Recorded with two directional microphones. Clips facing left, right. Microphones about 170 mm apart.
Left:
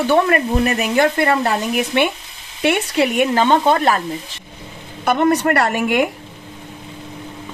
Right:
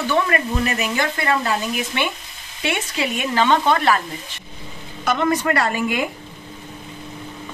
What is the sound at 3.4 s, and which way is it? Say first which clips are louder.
Speech: even; 45° left (ahead or behind).